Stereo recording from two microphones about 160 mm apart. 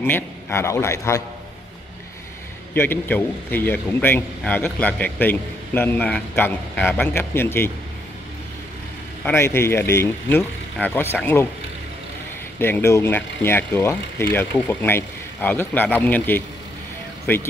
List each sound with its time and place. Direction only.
0.0 s a man's voice: 15° left (ahead or behind)
2.7 s a man's voice: 10° left (ahead or behind)
9.2 s a man's voice: 15° left (ahead or behind)
12.5 s a man's voice: 15° left (ahead or behind)